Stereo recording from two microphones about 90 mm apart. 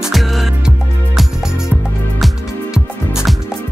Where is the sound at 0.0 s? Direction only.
Centre (ahead or behind).